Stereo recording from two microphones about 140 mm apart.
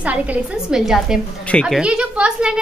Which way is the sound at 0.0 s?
10° right (ahead or behind).